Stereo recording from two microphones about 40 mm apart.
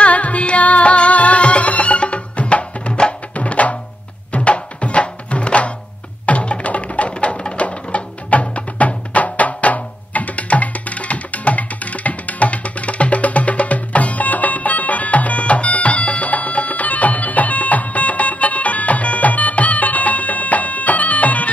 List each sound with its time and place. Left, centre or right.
0.0 s music: left